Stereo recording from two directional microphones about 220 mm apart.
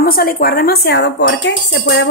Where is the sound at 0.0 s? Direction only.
45° left (ahead or behind).